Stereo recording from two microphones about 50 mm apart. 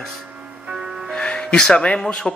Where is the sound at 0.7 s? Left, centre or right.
Centre.